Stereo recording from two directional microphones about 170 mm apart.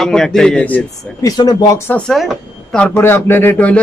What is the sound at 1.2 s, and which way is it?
Speech, 20° left (ahead or behind).